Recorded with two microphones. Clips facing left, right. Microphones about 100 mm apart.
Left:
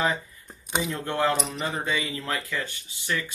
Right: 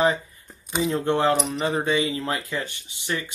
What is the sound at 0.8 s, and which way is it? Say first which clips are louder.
Speech: right 6 dB; 25° right (ahead or behind).